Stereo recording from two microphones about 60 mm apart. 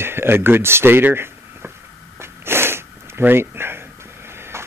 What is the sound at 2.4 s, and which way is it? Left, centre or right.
Snort, right.